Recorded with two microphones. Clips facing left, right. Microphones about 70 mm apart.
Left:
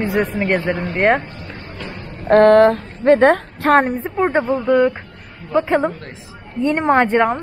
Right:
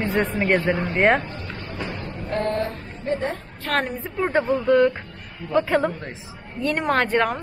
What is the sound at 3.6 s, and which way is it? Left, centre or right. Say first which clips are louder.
Speech: left 8 dB; left.